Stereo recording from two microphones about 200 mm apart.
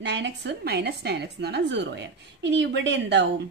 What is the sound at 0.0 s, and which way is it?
A woman's voice, 60° right (ahead or behind).